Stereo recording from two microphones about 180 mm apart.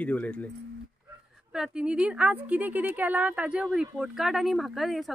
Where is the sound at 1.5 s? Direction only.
5° right (ahead or behind).